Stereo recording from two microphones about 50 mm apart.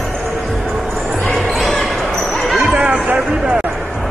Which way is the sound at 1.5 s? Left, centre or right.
Centre.